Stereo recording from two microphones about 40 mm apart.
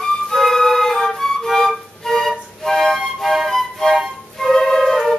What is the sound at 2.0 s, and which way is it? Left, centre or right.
Music, centre.